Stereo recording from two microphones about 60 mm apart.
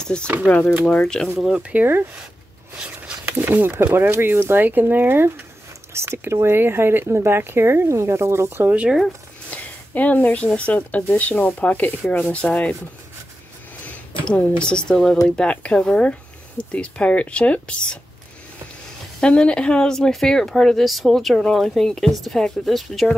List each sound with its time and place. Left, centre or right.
0.0 s speech: centre
0.5 s speech: left
0.8 s speech: centre
1.4 s speech: centre
3.3 s speech: right
9.5 s speech: left
13.8 s speech: left
19.2 s speech: centre